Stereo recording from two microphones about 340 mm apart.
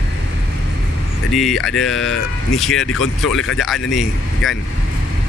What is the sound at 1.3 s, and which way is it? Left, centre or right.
Mantra, centre.